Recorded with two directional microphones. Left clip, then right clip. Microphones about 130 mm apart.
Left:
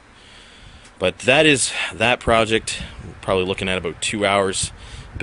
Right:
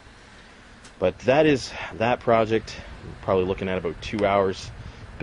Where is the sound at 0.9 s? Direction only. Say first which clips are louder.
Left 4 dB; 20° left (ahead or behind).